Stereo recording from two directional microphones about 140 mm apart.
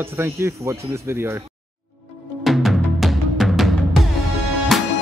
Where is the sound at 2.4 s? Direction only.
Centre (ahead or behind).